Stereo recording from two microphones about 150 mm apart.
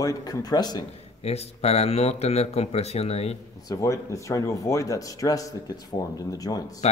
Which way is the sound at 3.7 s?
20° left (ahead or behind).